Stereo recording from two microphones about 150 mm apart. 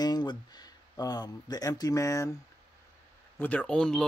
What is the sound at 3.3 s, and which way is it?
Speech, 10° left (ahead or behind).